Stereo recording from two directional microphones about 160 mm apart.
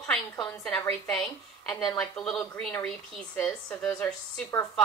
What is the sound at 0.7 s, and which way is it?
A woman's voice, 5° left (ahead or behind).